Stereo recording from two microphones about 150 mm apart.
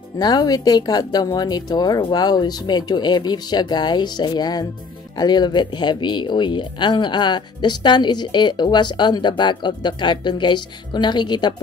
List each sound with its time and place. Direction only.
0.2 s speech: 30° left (ahead or behind)